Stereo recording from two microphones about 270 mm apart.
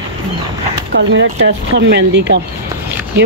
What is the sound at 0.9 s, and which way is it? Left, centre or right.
Speech, right.